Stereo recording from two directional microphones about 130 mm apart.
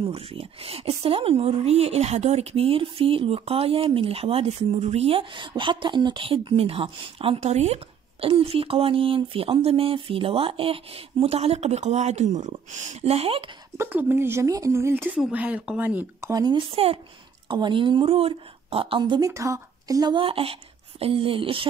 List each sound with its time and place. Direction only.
0.0 s speech: 45° right (ahead or behind)
13.7 s speech: 15° right (ahead or behind); by 16.6 s 30° right (ahead or behind)
16.7 s speech: 50° right (ahead or behind)
17.5 s a woman's voice: 35° right (ahead or behind)